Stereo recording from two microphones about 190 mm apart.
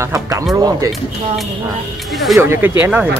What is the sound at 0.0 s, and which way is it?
Music, 15° right (ahead or behind).